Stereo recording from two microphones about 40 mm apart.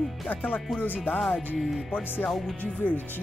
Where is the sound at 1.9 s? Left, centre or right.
Left.